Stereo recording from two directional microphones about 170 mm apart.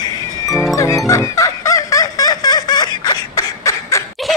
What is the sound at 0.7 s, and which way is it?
Music, 20° left (ahead or behind).